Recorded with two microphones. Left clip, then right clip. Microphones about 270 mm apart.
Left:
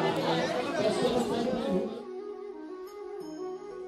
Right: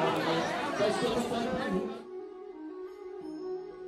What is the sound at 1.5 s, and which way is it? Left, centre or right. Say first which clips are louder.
Music: left 2 dB; centre.